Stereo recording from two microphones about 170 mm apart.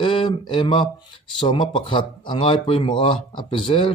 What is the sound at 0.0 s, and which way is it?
Speech, 30° left (ahead or behind).